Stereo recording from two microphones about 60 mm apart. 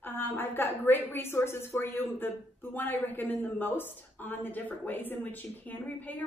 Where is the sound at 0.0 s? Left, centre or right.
Left.